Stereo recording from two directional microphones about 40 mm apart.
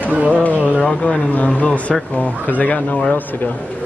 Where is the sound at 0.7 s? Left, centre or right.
Left.